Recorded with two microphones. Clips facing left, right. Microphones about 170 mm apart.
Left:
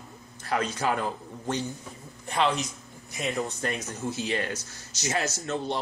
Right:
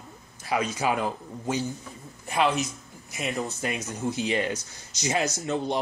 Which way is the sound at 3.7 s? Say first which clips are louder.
Right 2 dB; 15° right (ahead or behind).